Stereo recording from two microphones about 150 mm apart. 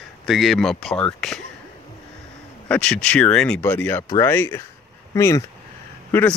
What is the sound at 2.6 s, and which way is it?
Speech, 5° left (ahead or behind).